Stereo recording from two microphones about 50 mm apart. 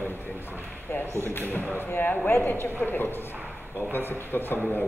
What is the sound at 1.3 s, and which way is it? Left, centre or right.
A man's voice, left.